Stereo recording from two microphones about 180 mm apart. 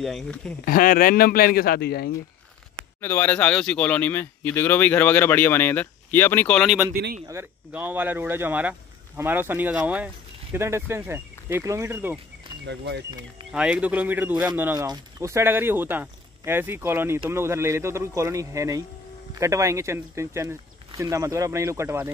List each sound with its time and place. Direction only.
0.0 s speech: centre (ahead or behind)
0.7 s speech: 50° left (ahead or behind)
3.0 s speech: 10° left (ahead or behind)
7.2 s speech: 15° right (ahead or behind)
12.6 s speech: 70° right (ahead or behind)
13.5 s speech: 5° right (ahead or behind)